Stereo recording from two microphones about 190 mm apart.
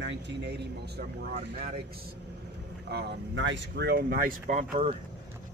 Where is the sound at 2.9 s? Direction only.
75° right (ahead or behind); by 4.6 s 50° right (ahead or behind).